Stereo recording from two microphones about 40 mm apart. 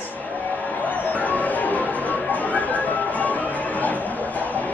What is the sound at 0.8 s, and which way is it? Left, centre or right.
Music, left.